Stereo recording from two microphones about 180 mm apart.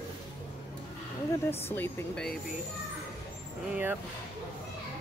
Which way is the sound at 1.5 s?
10° left (ahead or behind).